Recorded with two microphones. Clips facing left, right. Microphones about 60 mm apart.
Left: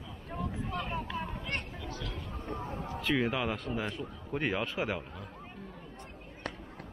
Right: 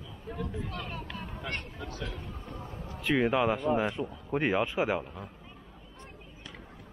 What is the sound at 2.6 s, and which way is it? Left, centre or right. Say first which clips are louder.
Speech: left 4 dB; left.